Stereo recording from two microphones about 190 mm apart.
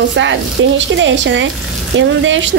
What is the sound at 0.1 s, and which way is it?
A woman's voice, 75° right (ahead or behind).